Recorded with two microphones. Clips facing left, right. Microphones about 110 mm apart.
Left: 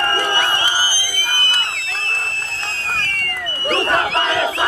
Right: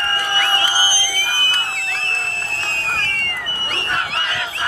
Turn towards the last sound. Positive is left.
turn(degrees=45)  # may be behind; listen again after turning